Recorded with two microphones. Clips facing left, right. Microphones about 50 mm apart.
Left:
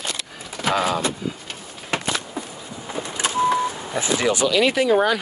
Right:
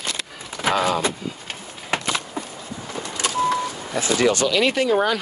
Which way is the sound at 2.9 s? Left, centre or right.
Left.